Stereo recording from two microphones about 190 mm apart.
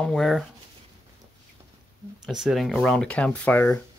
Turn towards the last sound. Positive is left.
turn(degrees=10)  # may be behind; listen again after turning